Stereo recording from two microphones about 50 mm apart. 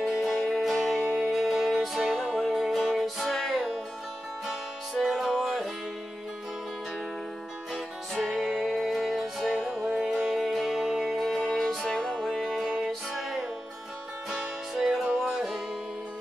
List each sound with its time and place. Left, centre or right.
0.0 s music: centre
1.1 s music: centre
1.4 s music: centre
5.0 s music: centre
7.7 s music: centre
9.7 s music: right
9.9 s music: centre
13.1 s music: centre